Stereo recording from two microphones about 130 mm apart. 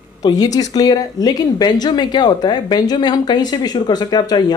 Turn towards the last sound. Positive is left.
turn(degrees=35)  # may be behind; listen again after turning